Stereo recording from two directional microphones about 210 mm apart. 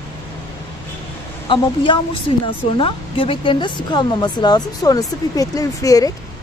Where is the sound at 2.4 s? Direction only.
25° left (ahead or behind).